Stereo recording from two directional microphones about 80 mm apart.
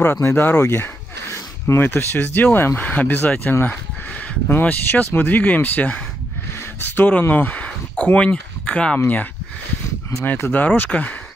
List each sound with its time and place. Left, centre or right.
0.0 s speech: left